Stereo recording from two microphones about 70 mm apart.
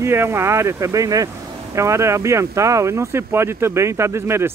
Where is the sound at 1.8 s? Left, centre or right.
Right.